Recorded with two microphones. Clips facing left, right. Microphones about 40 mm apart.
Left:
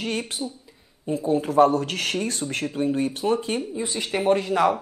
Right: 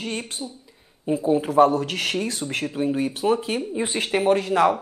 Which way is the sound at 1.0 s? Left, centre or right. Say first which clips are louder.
Right 2 dB; centre.